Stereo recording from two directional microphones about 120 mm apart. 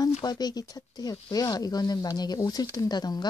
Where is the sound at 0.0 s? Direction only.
35° left (ahead or behind).